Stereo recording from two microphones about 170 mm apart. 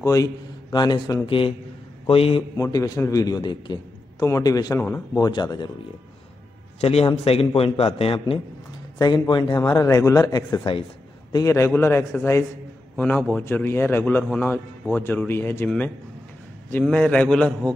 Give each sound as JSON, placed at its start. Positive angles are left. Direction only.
{"t": 0.0, "sound": "a man's voice", "side_deg": 20}
{"t": 2.5, "sound": "a man's voice", "side_deg": 20}
{"t": 6.8, "sound": "a man's voice", "side_deg": 35}
{"t": 8.9, "sound": "a man's voice", "side_deg": 20}
{"t": 11.3, "sound": "a man's voice", "side_deg": 15}